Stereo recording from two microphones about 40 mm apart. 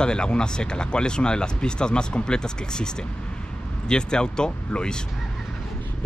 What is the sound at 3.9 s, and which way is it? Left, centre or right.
Speech, left.